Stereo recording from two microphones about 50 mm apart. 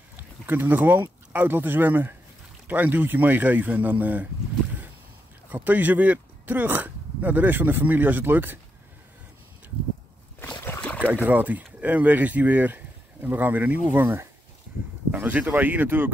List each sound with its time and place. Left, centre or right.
0.5 s speech: right
5.5 s speech: right
10.4 s boat: left
11.2 s speech: right
15.0 s speech: right